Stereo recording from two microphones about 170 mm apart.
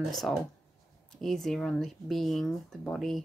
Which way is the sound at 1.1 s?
Centre (ahead or behind).